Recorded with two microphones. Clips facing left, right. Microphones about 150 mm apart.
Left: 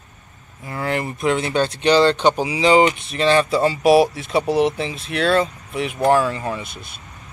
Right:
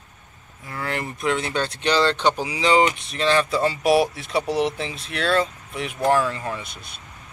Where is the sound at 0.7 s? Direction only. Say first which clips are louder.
Left 5 dB; 20° left (ahead or behind).